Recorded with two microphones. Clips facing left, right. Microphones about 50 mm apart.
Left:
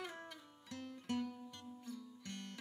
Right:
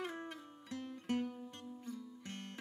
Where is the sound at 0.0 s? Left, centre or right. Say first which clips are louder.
Right 5 dB; centre.